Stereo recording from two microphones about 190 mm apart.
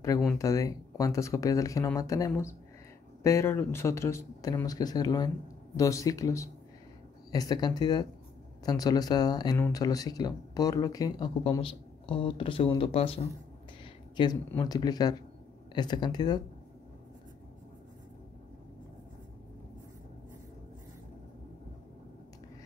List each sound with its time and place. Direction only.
0.4 s speech: 15° left (ahead or behind)